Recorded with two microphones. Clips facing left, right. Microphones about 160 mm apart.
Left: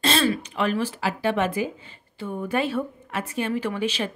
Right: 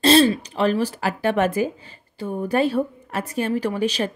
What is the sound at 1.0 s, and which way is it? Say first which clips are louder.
A woman's voice: right 3 dB; 50° right (ahead or behind).